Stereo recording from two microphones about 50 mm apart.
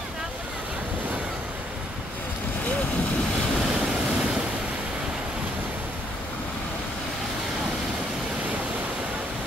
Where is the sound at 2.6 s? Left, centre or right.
Left.